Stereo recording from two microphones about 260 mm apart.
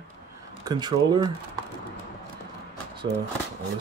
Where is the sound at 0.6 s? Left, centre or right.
Centre.